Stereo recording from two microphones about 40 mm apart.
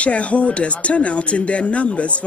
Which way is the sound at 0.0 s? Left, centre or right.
Left.